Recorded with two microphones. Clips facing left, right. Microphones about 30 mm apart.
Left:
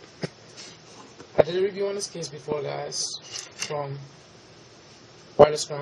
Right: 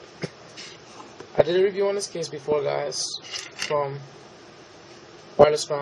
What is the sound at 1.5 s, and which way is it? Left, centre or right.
Speech, centre.